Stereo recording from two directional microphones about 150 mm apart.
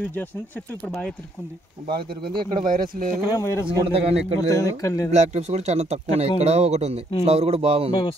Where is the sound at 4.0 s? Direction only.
40° right (ahead or behind).